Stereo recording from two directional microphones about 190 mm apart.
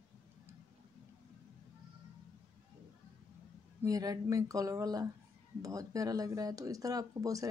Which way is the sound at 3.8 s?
20° right (ahead or behind).